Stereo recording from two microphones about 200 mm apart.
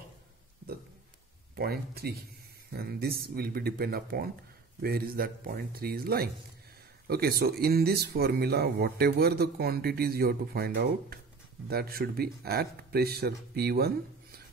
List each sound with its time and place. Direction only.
1.5 s speech: 50° right (ahead or behind)